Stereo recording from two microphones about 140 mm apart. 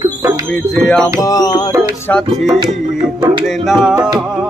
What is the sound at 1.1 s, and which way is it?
Music, 25° left (ahead or behind).